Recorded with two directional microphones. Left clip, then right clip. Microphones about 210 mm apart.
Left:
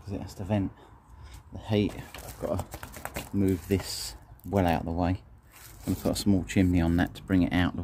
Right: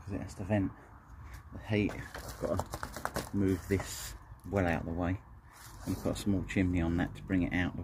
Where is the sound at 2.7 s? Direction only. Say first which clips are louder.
Right 2 dB; 10° left (ahead or behind).